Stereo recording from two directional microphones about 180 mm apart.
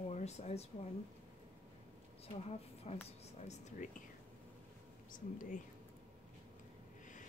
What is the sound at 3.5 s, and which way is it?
Speech, 45° left (ahead or behind).